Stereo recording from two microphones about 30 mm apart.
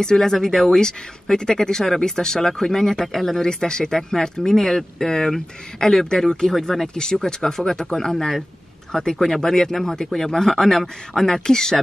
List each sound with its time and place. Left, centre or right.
0.0 s speech: centre
3.4 s speech: left